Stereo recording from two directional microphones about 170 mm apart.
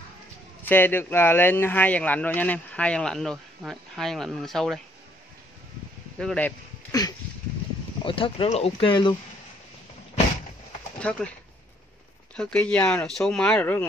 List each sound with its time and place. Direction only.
0.7 s speech: 10° left (ahead or behind)
6.1 s speech: 5° left (ahead or behind)
6.9 s a sound: 20° left (ahead or behind)
8.0 s speech: 30° left (ahead or behind)
11.0 s speech: 5° left (ahead or behind)
12.4 s speech: 5° left (ahead or behind)